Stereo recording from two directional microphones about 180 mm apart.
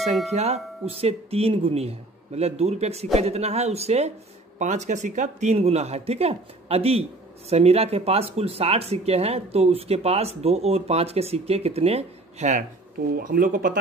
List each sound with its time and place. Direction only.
0.3 s speech: 35° right (ahead or behind)
13.1 s speech: 55° right (ahead or behind)